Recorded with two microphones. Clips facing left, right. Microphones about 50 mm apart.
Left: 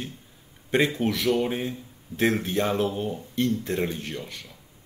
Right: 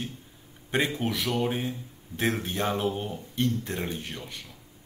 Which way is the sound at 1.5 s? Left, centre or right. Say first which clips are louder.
Left 1 dB; centre.